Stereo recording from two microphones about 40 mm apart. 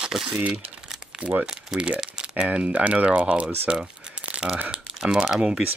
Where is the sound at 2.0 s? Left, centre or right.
Right.